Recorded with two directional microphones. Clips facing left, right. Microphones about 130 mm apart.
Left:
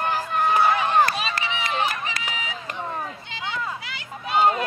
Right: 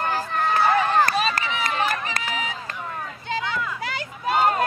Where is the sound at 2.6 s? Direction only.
25° left (ahead or behind).